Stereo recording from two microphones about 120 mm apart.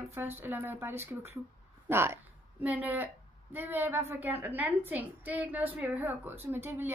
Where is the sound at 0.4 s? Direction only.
20° right (ahead or behind).